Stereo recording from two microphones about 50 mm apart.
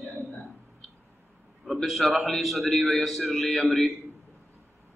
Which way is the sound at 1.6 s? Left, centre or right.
Centre.